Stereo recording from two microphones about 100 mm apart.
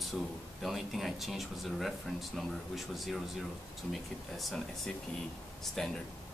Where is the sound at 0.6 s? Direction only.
Centre (ahead or behind).